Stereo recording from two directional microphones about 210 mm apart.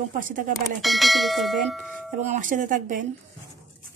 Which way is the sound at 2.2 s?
40° right (ahead or behind).